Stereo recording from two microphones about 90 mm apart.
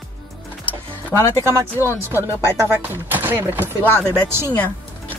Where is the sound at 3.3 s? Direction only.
25° right (ahead or behind).